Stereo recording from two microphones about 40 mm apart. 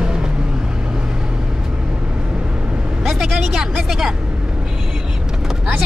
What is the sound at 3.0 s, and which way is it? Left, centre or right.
Speech, centre.